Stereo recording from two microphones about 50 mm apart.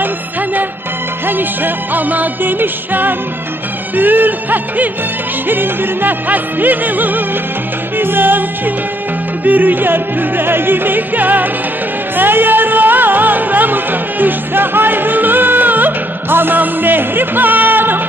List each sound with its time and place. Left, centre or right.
1.2 s music: right